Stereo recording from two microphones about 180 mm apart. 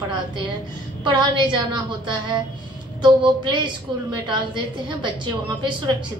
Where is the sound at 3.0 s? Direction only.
25° right (ahead or behind).